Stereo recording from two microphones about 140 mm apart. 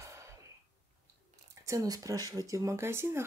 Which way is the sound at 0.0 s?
20° right (ahead or behind).